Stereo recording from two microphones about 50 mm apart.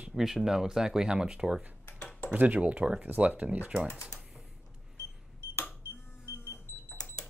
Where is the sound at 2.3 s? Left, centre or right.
Right.